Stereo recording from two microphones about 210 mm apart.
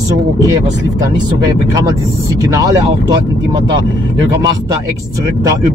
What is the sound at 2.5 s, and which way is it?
Speech, 15° right (ahead or behind).